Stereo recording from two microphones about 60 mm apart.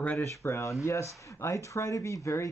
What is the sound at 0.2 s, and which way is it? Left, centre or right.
Speech, left.